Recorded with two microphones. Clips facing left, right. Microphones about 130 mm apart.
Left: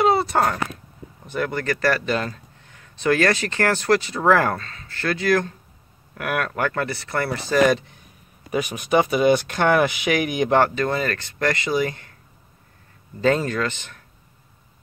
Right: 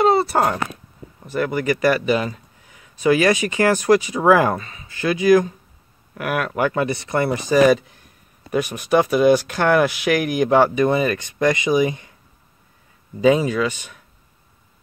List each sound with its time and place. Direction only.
0.0 s a sound: centre (ahead or behind)
1.2 s speech: 5° right (ahead or behind)
10.7 s speech: 15° right (ahead or behind)
13.2 s speech: 10° right (ahead or behind)